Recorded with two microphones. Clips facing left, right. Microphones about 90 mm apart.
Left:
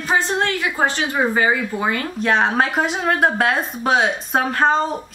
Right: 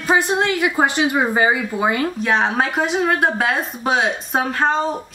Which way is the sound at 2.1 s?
Centre (ahead or behind).